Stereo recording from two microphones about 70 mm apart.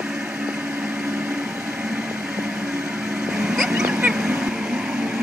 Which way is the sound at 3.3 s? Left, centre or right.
Centre.